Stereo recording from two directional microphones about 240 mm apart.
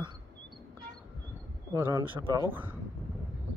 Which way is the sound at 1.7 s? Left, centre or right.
Centre.